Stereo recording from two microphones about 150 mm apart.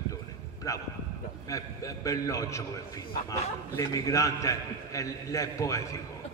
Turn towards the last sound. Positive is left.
turn(degrees=20)  # may be behind; listen again after turning